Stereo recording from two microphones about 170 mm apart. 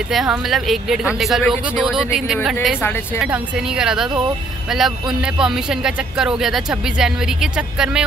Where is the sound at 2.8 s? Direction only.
15° left (ahead or behind).